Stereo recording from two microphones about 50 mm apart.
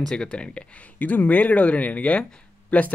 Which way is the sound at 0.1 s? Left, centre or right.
Centre.